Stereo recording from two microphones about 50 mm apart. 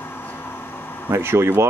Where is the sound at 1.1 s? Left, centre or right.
Right.